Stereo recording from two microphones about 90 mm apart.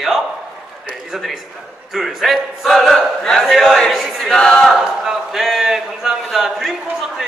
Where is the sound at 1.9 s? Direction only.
Centre (ahead or behind).